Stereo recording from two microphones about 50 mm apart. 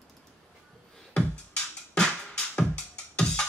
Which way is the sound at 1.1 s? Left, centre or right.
Centre.